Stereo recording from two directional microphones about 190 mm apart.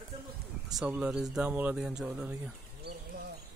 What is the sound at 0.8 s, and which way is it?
Speech, 5° right (ahead or behind).